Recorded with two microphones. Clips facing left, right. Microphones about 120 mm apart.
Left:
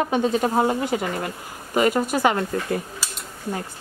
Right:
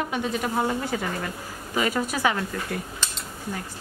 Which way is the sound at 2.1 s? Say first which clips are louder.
Left 4 dB; 45° left (ahead or behind).